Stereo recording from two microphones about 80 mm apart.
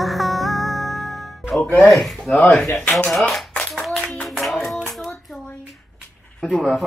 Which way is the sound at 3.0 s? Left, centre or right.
Centre.